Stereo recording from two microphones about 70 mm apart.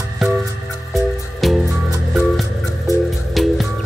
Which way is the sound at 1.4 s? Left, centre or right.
Centre.